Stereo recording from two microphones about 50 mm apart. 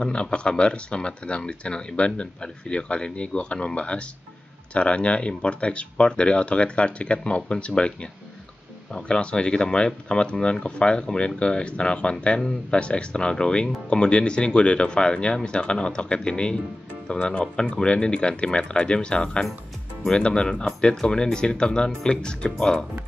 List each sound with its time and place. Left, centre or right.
0.0 s speech: centre